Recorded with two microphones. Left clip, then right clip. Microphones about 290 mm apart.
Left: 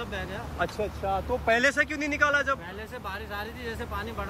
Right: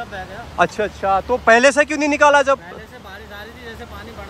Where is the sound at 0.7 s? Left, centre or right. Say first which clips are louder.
Right 11 dB; right.